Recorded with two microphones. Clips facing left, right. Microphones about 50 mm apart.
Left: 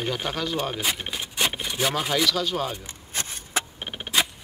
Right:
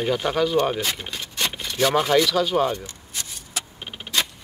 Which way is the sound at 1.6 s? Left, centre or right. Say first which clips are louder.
Right 4 dB; centre.